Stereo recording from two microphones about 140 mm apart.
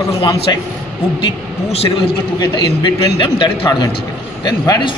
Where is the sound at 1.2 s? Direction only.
45° left (ahead or behind).